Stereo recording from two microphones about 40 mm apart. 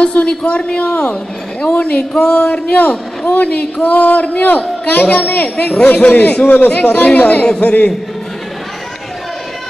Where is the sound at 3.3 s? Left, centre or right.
Left.